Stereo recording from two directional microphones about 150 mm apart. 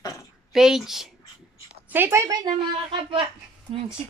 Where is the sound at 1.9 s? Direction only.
15° right (ahead or behind).